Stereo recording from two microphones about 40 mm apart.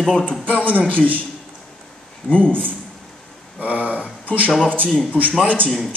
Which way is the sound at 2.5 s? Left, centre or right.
Right.